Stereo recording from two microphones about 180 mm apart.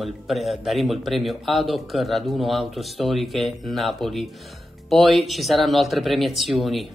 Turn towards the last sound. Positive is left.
turn(degrees=0)  # may be behind; listen again after turning